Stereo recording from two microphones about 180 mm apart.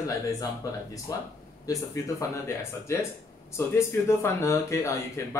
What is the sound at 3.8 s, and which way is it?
Speech, 15° left (ahead or behind).